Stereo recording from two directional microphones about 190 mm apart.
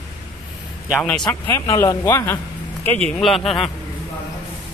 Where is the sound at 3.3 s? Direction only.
30° left (ahead or behind).